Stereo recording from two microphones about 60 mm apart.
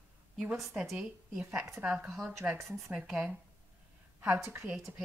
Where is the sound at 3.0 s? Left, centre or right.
Centre.